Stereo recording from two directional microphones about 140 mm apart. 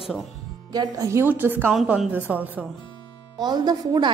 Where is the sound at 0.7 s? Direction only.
20° right (ahead or behind).